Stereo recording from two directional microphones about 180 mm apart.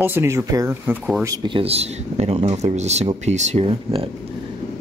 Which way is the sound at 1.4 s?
30° right (ahead or behind).